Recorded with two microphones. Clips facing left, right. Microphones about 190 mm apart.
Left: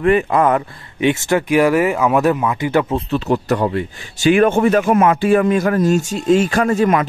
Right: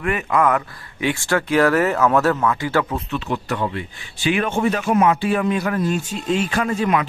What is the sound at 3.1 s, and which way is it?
Speech, 40° left (ahead or behind).